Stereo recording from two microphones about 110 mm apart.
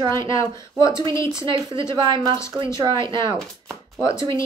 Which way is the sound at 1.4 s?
50° right (ahead or behind).